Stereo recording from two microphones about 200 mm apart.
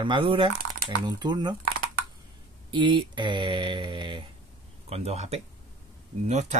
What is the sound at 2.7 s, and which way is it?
Speech, 25° right (ahead or behind).